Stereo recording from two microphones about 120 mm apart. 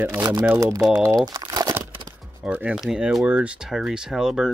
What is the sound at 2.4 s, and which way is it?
Speech, 10° right (ahead or behind).